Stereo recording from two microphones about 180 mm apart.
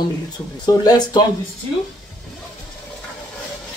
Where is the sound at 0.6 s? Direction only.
20° left (ahead or behind).